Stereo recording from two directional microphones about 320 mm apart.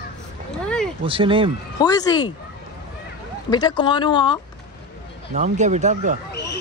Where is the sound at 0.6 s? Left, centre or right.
Centre.